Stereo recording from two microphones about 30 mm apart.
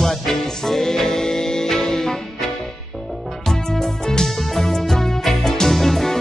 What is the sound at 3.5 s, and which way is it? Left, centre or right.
Music, centre.